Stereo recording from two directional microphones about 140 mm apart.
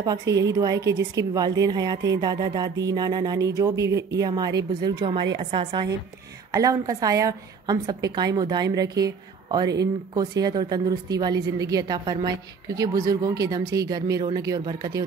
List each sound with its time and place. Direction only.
0.0 s a woman's voice: 25° right (ahead or behind)
6.5 s a woman's voice: 25° right (ahead or behind)